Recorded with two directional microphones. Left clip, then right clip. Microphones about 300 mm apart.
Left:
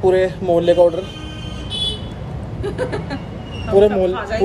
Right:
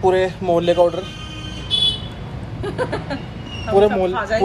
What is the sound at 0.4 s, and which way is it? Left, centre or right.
Speech, centre.